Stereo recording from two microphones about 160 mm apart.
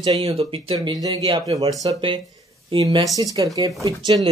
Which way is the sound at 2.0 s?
35° right (ahead or behind).